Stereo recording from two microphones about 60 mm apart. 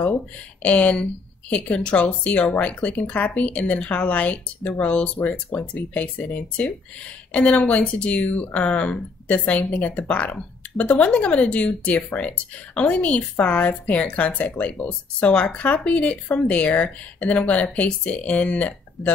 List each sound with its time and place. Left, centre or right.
0.0 s speech: left